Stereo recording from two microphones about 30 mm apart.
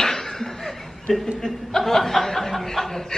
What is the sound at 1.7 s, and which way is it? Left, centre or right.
Speech, centre.